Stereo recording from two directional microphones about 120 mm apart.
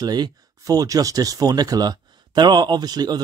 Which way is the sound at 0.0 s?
35° right (ahead or behind).